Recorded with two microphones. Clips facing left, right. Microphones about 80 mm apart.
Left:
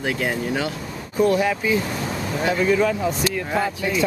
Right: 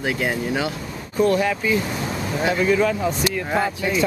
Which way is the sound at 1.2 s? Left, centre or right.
Centre.